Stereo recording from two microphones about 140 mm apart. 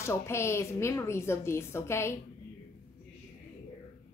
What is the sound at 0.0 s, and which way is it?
A woman's voice, 20° left (ahead or behind).